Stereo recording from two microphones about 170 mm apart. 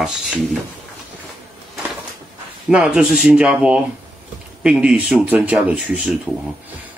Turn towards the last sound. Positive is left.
turn(degrees=-5)  # may be behind; listen again after turning